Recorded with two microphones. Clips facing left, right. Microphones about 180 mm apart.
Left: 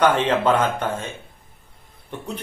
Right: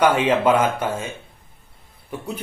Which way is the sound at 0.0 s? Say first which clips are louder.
Right 1 dB; 10° right (ahead or behind).